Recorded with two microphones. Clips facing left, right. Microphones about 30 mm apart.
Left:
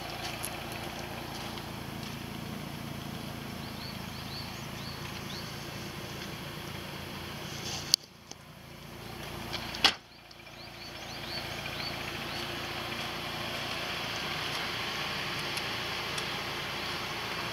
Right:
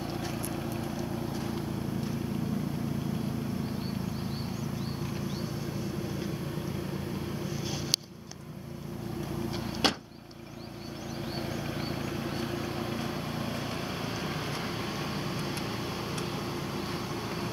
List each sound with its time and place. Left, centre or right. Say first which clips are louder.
0.0 s vehicle: right 3 dB; left
5.0 s a sound: right 5 dB; left
6.9 s vehicle: right 5 dB; left
7.6 s vehicle: left 2 dB; centre
9.2 s vehicle: right 3 dB; left
11.2 s vehicle: right 2 dB; left